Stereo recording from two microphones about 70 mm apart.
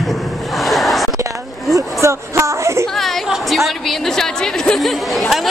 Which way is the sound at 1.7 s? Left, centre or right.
Right.